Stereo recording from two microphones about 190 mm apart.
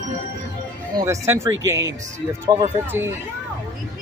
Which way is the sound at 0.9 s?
15° right (ahead or behind).